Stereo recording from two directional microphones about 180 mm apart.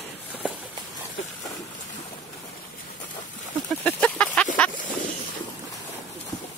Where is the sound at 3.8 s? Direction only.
10° left (ahead or behind).